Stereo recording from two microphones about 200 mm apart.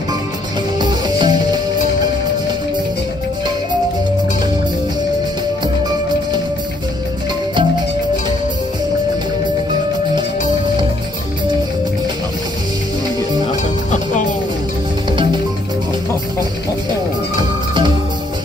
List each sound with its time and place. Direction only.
0.7 s music: 20° right (ahead or behind)
17.4 s music: 25° right (ahead or behind)